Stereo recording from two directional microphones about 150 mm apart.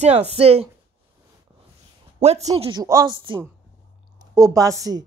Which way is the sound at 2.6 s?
30° right (ahead or behind).